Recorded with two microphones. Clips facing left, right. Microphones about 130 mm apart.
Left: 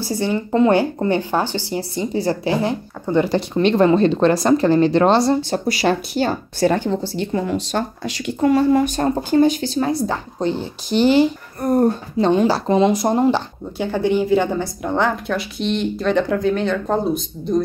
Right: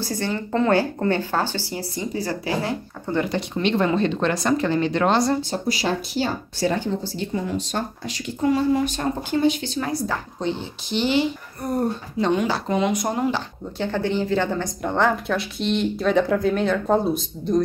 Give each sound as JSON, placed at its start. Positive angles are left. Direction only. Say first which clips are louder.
{"t": 0.0, "sound": "speech", "louder": "left 5 dB", "side_deg": 15}
{"t": 3.3, "sound": "speech", "louder": "left 6 dB", "side_deg": 35}
{"t": 5.4, "sound": "a woman's voice", "louder": "left 5 dB", "side_deg": 70}
{"t": 9.8, "sound": "speech", "louder": "left 5 dB", "side_deg": 25}
{"t": 10.4, "sound": "speech", "louder": "left 7 dB", "side_deg": 40}
{"t": 12.2, "sound": "speech", "louder": "left 5 dB", "side_deg": 35}
{"t": 13.7, "sound": "a woman's voice", "louder": "left 5 dB", "side_deg": 15}